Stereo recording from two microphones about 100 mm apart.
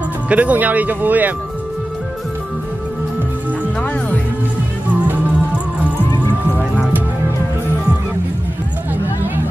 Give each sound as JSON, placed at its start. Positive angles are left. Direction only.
{"t": 0.3, "sound": "speech", "side_deg": -15}